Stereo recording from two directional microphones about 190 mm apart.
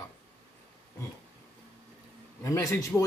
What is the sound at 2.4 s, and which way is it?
Speech, 15° left (ahead or behind).